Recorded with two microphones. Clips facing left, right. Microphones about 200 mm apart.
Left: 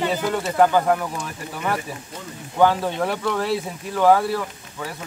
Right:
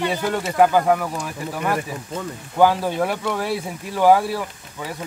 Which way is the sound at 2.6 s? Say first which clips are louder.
Right 1 dB; 10° right (ahead or behind).